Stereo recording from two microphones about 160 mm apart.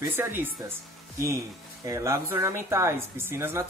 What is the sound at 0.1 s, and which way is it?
Speech, 15° right (ahead or behind).